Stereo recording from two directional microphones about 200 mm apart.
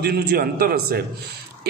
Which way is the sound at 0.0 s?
50° right (ahead or behind).